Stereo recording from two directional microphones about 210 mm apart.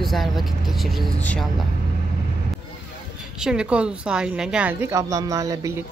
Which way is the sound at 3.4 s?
5° right (ahead or behind).